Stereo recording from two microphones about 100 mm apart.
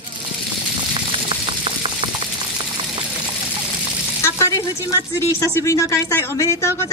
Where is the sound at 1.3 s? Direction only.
65° right (ahead or behind).